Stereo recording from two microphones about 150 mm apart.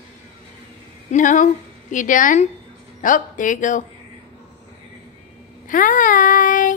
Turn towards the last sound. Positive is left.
turn(degrees=60)  # may be behind; listen again after turning